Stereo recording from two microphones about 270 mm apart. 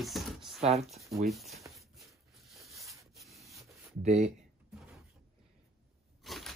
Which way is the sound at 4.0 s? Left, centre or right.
Right.